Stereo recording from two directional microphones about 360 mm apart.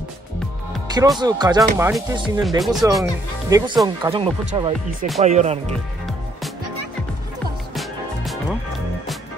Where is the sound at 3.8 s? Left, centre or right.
Centre.